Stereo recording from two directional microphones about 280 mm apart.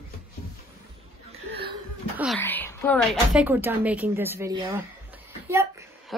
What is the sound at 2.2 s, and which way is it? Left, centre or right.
A child's voice, centre.